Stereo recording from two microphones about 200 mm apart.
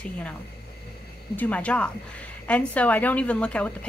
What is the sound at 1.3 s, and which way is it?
A woman's voice, 10° left (ahead or behind).